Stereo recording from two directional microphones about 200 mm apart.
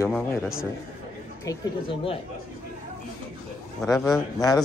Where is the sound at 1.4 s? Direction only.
20° left (ahead or behind).